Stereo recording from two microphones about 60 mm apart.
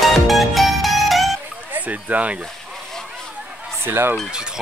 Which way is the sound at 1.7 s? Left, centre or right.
Right.